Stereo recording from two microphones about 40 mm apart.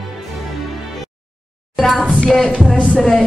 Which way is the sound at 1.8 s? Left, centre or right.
Centre.